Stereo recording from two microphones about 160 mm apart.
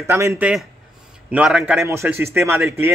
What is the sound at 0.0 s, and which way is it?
Speech, 15° right (ahead or behind).